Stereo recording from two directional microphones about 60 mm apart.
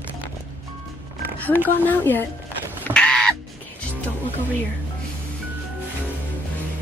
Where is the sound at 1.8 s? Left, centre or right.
Left.